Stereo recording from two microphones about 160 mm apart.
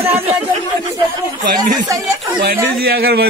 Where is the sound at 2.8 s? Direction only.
75° right (ahead or behind).